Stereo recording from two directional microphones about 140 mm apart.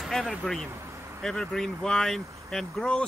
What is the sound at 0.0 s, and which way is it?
Speech, centre (ahead or behind).